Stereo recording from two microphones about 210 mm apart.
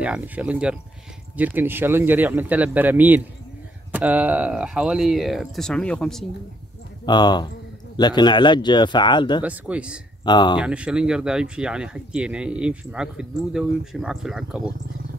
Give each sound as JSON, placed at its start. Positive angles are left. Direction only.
{"t": 0.0, "sound": "speech", "side_deg": -5}
{"t": 7.1, "sound": "speech", "side_deg": 20}
{"t": 9.4, "sound": "speech", "side_deg": -5}
{"t": 10.2, "sound": "speech", "side_deg": 20}
{"t": 10.6, "sound": "speech", "side_deg": -5}